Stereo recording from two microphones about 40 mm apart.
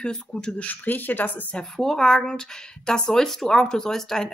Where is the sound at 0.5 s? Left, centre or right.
Left.